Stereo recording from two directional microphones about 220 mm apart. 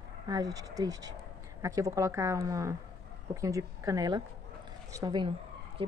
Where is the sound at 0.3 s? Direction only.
15° right (ahead or behind).